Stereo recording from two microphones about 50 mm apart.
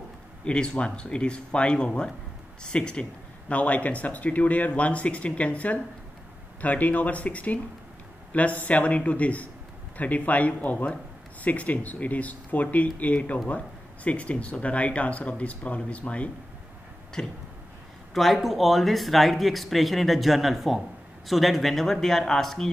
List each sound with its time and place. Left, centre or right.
0.5 s speech: centre
17.2 s a sound: centre
18.1 s speech: centre